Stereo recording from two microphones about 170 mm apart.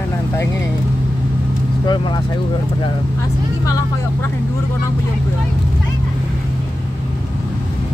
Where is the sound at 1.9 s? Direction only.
25° left (ahead or behind).